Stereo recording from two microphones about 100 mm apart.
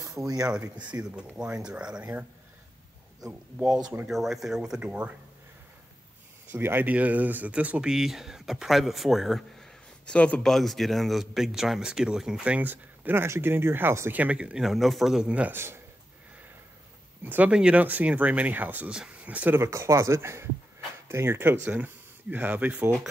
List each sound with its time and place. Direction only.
0.4 s speech: 10° right (ahead or behind)
3.5 s speech: 5° right (ahead or behind)
6.5 s speech: 20° right (ahead or behind); by 10.5 s 10° left (ahead or behind)
10.5 s speech: centre (ahead or behind); by 14.2 s 25° right (ahead or behind)
14.2 s speech: 10° right (ahead or behind)
17.2 s speech: 15° right (ahead or behind)